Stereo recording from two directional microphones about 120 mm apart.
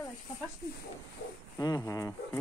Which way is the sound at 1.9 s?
25° left (ahead or behind).